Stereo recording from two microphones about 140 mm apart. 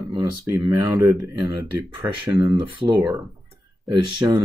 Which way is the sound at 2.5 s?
35° right (ahead or behind).